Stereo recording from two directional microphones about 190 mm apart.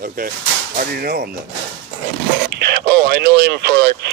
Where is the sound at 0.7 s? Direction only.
55° right (ahead or behind).